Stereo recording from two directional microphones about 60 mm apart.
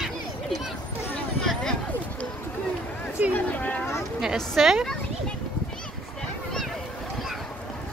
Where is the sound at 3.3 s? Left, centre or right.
Left.